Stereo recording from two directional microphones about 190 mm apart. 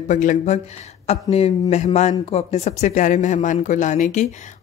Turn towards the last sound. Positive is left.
turn(degrees=40)  # may be behind; listen again after turning